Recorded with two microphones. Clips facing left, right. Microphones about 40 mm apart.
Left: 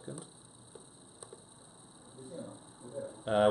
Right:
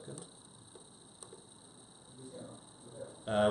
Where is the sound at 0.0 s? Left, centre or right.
Centre.